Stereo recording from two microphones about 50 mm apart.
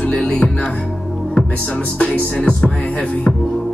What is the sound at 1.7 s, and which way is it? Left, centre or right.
Music, left.